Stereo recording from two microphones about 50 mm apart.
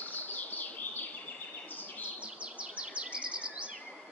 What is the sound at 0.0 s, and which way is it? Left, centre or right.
Bird, left.